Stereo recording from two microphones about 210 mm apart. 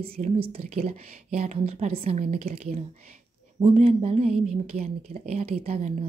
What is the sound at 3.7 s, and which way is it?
Speech, 30° right (ahead or behind).